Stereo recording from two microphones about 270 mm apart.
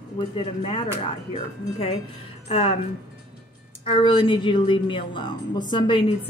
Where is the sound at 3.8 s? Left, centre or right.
Centre.